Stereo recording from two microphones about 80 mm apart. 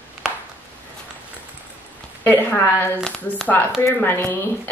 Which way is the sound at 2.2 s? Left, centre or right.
Left.